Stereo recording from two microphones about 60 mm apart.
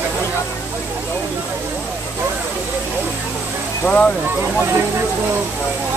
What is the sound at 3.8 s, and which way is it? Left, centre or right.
Speech, centre.